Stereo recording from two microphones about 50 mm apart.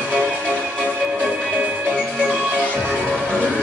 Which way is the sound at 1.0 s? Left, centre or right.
Right.